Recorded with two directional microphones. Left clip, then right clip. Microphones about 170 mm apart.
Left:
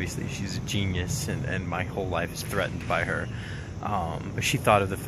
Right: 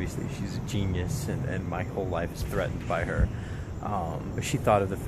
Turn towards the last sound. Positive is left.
turn(degrees=0)  # may be behind; listen again after turning